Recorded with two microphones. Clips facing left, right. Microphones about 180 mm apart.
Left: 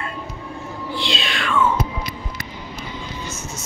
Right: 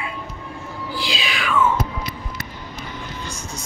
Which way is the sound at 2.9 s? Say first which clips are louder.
Left 1 dB; 15° left (ahead or behind).